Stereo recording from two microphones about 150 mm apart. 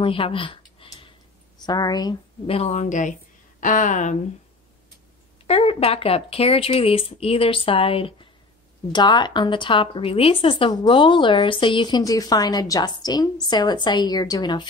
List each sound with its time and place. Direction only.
0.0 s a sound: 35° left (ahead or behind)
1.7 s speech: 25° left (ahead or behind)
2.4 s speech: 45° left (ahead or behind)
5.5 s a woman's voice: 40° left (ahead or behind)